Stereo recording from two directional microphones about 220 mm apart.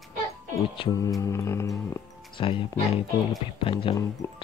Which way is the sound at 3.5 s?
25° left (ahead or behind).